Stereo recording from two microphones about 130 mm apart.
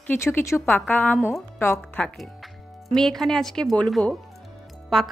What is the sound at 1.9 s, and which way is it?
Speech, 5° left (ahead or behind).